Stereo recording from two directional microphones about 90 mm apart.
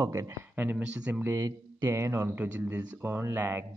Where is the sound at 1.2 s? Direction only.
25° right (ahead or behind).